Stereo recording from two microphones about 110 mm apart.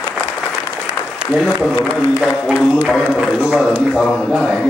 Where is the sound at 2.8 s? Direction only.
5° left (ahead or behind).